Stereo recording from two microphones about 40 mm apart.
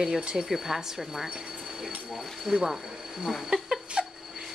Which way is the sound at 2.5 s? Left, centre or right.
Centre.